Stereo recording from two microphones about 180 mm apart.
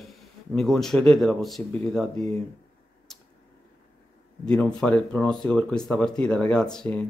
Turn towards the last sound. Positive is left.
turn(degrees=5)  # may be behind; listen again after turning